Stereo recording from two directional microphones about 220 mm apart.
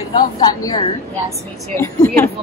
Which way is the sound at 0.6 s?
15° left (ahead or behind).